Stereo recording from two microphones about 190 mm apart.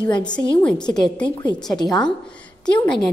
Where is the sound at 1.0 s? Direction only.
25° left (ahead or behind).